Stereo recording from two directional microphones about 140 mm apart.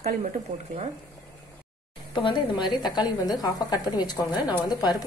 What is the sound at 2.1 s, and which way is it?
A woman's voice, 35° left (ahead or behind).